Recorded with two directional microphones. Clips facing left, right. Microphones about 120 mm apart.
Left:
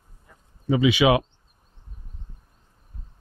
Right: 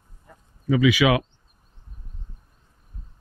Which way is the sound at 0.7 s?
25° left (ahead or behind).